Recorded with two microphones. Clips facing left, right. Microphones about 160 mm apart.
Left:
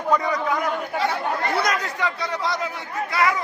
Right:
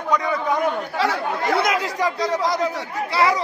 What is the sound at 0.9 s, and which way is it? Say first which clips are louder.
Chatter: right 1 dB; 90° right.